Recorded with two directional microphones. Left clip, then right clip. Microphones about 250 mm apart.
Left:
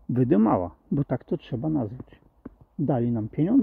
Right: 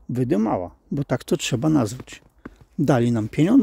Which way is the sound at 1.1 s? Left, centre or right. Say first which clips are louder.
Right 7 dB; centre.